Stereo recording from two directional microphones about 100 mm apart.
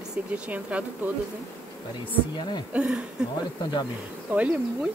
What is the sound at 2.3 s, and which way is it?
Speech, 50° left (ahead or behind).